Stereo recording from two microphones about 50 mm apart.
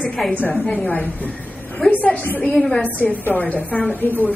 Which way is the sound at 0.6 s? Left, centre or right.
Left.